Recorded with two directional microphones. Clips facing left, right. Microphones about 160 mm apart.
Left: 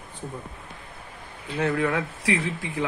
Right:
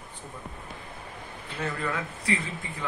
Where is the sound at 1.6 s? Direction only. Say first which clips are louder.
Left 7 dB; 70° left (ahead or behind).